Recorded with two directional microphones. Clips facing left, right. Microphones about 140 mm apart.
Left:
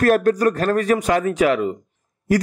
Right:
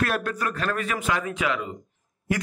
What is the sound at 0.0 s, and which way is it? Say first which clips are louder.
A man's voice: left 11 dB; 45° left (ahead or behind).